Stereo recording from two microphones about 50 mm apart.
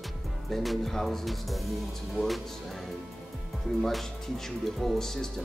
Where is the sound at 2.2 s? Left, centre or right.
Right.